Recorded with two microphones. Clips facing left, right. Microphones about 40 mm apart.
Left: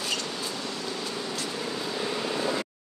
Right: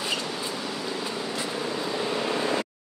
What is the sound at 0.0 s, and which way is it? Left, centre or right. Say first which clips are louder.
Vehicle: right 2 dB; centre.